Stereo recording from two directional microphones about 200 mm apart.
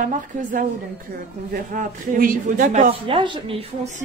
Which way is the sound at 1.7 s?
45° right (ahead or behind).